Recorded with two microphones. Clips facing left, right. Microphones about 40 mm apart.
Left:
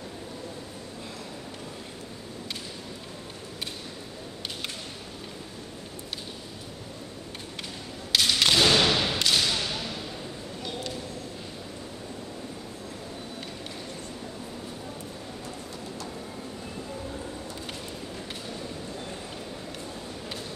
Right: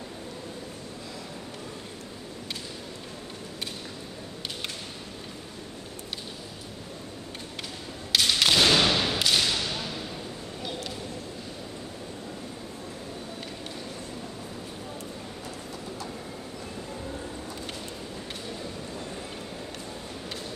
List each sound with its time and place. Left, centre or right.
8.1 s whip: centre